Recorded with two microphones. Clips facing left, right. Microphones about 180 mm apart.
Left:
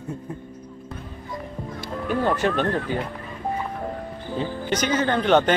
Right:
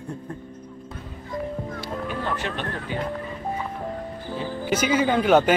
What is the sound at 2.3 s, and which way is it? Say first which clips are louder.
Speech: left 7 dB; 45° left (ahead or behind).